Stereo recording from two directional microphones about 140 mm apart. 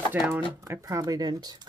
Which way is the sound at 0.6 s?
20° right (ahead or behind).